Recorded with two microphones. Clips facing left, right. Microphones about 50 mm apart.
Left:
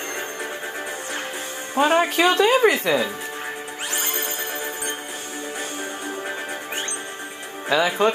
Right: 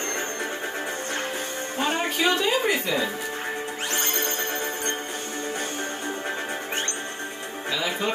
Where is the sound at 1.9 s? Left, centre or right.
Left.